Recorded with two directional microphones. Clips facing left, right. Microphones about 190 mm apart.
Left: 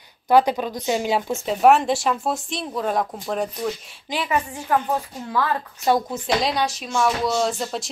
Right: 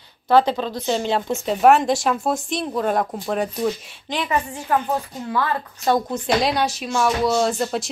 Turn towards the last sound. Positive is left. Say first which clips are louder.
# right 3 dB
turn(degrees=0)  # may be behind; listen again after turning